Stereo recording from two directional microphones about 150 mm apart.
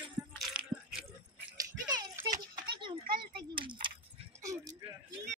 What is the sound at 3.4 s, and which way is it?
Speech, 35° right (ahead or behind).